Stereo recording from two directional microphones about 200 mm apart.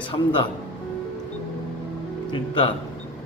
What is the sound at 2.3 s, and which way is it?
Speech, 25° left (ahead or behind).